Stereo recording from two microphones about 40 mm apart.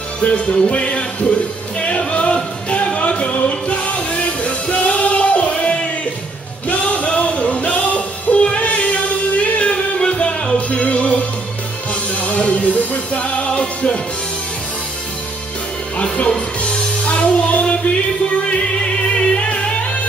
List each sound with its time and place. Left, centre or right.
0.2 s music: left
16.3 s music: left
19.1 s music: left